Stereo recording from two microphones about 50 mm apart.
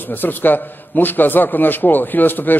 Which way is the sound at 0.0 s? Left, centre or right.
Left.